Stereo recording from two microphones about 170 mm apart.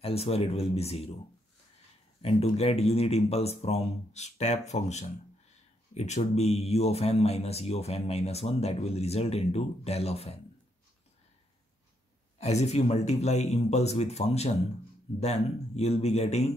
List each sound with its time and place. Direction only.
0.0 s speech: 35° left (ahead or behind)
2.2 s speech: 40° left (ahead or behind)
12.4 s speech: 40° left (ahead or behind)